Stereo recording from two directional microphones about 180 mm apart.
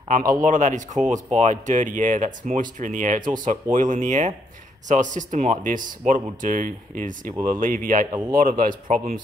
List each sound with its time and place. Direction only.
0.1 s speech: 50° right (ahead or behind)